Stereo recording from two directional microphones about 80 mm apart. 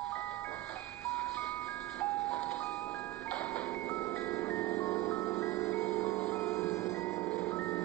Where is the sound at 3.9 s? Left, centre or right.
Left.